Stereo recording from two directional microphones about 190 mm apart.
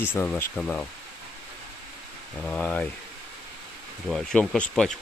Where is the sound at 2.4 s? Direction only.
5° left (ahead or behind).